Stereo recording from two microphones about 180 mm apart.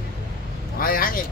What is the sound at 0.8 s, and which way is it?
Speech, 55° left (ahead or behind).